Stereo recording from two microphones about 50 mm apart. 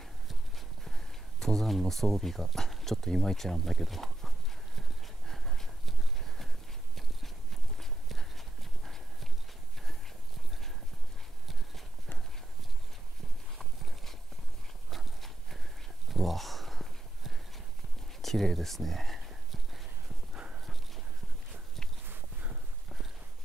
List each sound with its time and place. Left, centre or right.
0.0 s clip-clop: centre
4.7 s horse: centre
7.7 s clip-clop: centre
13.6 s clip-clop: centre
14.9 s horse: centre
16.1 s a sound: centre
18.2 s speech: centre
19.2 s horse: centre
20.3 s clip-clop: right